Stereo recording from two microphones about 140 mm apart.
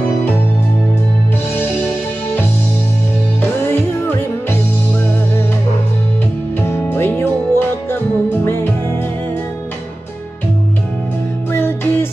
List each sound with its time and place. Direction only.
6.6 s music: 15° left (ahead or behind)
11.5 s music: 15° left (ahead or behind)